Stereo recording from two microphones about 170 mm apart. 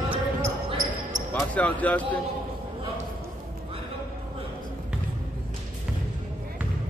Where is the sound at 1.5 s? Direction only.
10° left (ahead or behind).